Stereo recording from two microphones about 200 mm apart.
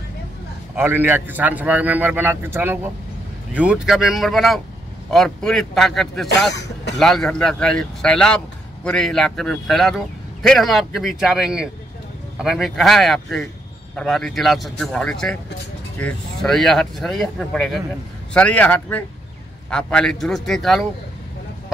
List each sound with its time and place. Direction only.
0.7 s a man's voice: 10° right (ahead or behind)
6.5 s throat clearing: 60° left (ahead or behind)
7.0 s a man's voice: centre (ahead or behind)